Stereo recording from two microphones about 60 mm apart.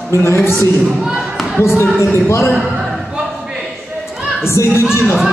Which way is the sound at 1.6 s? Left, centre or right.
Left.